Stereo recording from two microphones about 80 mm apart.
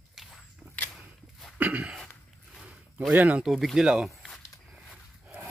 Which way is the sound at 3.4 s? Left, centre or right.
Centre.